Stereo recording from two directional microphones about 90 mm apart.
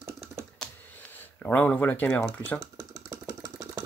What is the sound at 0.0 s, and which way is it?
Computer keyboard, 30° right (ahead or behind).